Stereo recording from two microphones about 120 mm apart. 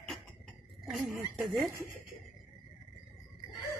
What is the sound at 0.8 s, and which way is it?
Speech, centre (ahead or behind).